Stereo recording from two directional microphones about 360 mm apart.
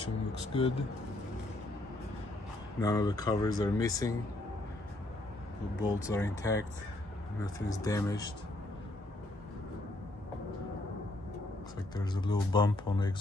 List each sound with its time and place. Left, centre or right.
0.0 s speech: centre
2.8 s speech: centre
6.0 s speech: centre
7.8 s speech: centre
11.9 s speech: centre